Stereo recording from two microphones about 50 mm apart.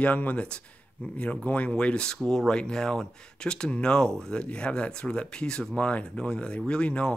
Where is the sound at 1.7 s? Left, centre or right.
Centre.